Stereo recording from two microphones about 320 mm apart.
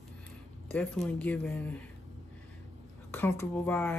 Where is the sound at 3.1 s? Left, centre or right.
Centre.